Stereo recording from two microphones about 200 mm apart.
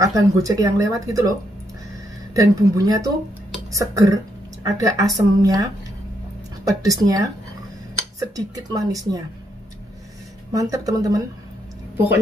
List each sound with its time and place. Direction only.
0.0 s speech: 15° right (ahead or behind)
2.3 s speech: 15° right (ahead or behind)
10.5 s speech: 15° right (ahead or behind)